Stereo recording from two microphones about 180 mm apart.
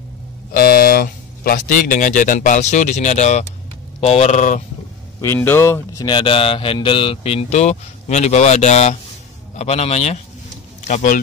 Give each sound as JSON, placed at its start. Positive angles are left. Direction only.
{"t": 0.5, "sound": "speech", "side_deg": 60}
{"t": 5.2, "sound": "speech", "side_deg": 10}
{"t": 6.0, "sound": "speech", "side_deg": 30}